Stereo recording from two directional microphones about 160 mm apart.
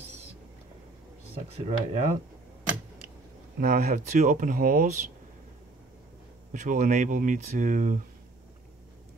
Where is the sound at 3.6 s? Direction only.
60° right (ahead or behind).